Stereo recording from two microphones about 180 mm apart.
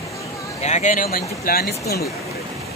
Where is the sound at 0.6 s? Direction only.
40° left (ahead or behind); by 2.0 s 60° left (ahead or behind).